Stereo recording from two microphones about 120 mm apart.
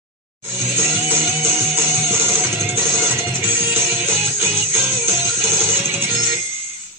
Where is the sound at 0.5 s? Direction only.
20° right (ahead or behind).